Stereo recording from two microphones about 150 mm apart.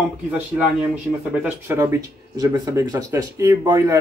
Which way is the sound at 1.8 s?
25° right (ahead or behind).